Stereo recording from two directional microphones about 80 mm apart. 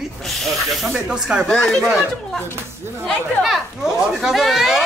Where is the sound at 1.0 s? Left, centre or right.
Centre.